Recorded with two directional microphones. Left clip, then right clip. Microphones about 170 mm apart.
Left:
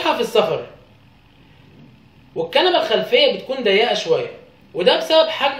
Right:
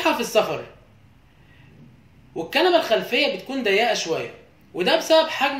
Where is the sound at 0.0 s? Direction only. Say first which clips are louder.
Left 3 dB; 50° right (ahead or behind).